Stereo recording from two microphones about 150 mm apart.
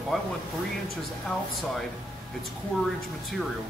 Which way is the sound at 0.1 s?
Centre (ahead or behind).